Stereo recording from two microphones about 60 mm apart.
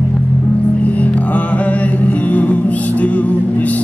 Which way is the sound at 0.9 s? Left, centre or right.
Left.